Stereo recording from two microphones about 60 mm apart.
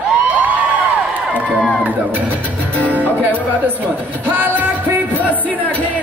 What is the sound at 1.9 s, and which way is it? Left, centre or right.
Speech, right.